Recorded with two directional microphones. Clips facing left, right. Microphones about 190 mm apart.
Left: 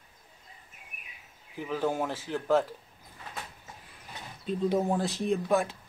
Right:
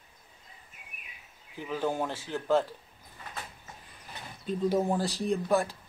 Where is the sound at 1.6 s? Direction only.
5° left (ahead or behind).